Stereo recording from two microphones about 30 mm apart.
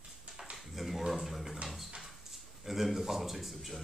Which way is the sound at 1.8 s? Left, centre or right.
Right.